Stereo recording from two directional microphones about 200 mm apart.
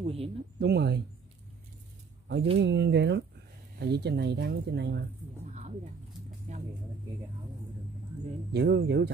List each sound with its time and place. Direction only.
0.0 s speech: 30° right (ahead or behind)
0.6 s speech: 55° right (ahead or behind)
2.6 s speech: 60° right (ahead or behind)
5.4 s a sound: 35° right (ahead or behind)
8.5 s speech: 55° right (ahead or behind)